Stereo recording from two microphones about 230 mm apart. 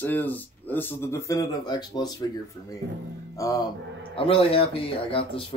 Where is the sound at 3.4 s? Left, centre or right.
Centre.